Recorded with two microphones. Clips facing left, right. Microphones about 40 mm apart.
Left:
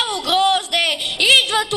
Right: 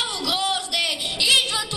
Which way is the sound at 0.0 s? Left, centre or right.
Left.